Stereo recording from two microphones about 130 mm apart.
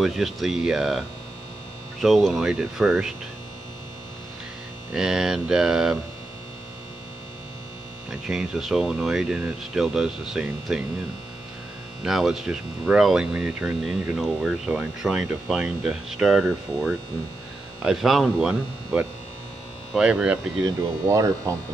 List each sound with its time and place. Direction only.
0.0 s speech: centre (ahead or behind)
4.9 s speech: 5° right (ahead or behind)
8.1 s speech: 5° right (ahead or behind)
12.0 s speech: 5° right (ahead or behind)
21.1 s speech: 25° right (ahead or behind)